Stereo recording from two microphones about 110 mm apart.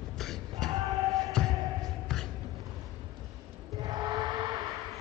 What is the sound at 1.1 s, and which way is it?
Music, 5° left (ahead or behind).